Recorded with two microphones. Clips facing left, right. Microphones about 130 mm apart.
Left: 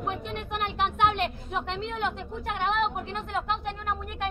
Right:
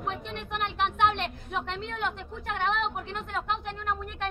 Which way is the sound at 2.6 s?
5° left (ahead or behind).